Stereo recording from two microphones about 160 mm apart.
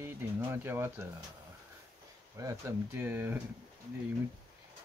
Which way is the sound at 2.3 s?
20° right (ahead or behind).